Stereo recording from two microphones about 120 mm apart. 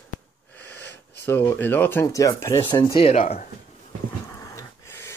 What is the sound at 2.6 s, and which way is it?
Speech, 40° left (ahead or behind).